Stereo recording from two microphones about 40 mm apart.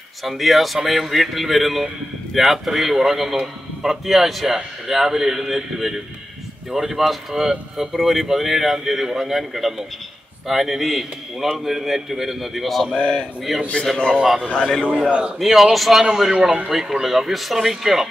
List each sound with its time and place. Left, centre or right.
0.2 s a man's voice: centre
14.5 s a man's voice: centre
14.9 s a man's voice: right
15.3 s a man's voice: centre
16.3 s a man's voice: right
16.7 s speech: centre